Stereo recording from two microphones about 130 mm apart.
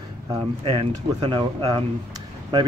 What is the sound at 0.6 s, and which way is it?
Speech, 45° right (ahead or behind).